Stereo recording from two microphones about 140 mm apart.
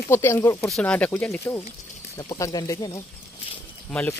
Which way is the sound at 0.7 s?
10° left (ahead or behind).